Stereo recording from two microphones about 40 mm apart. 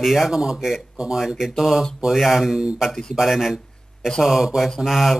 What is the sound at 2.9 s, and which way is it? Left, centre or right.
Speech, centre.